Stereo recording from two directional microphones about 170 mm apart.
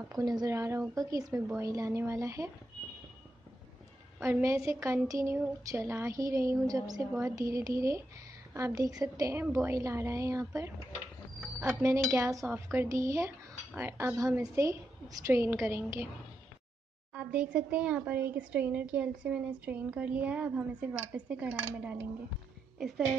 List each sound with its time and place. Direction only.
0.1 s speech: 20° right (ahead or behind)
4.2 s speech: 15° right (ahead or behind)
17.1 s speech: 5° right (ahead or behind)